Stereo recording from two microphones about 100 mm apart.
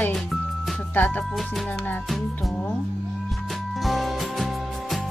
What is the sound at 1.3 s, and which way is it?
Music, centre (ahead or behind).